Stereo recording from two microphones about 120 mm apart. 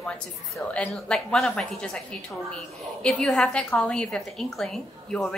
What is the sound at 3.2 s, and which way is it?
A woman's voice, centre (ahead or behind).